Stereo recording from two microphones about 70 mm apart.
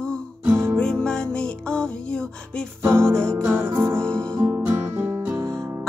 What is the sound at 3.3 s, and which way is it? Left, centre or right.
Music, right.